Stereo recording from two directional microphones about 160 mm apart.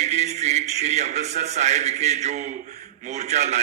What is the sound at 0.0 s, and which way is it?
A man's voice, 45° right (ahead or behind).